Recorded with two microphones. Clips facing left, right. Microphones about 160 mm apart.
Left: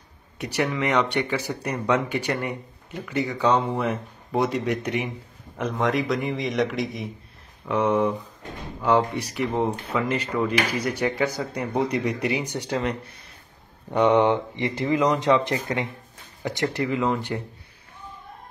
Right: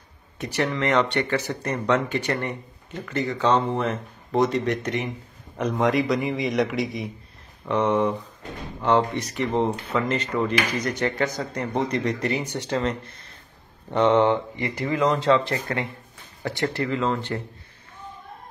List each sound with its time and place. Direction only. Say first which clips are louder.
0.4 s speech: even; 15° left (ahead or behind)
5.6 s a man's voice: right 2 dB; centre (ahead or behind)